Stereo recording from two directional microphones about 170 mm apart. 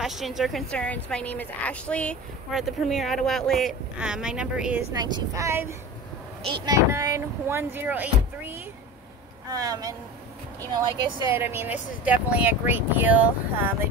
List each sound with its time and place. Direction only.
0.0 s a woman's voice: centre (ahead or behind)
4.9 s speech: 25° right (ahead or behind)
9.5 s speech: 20° right (ahead or behind)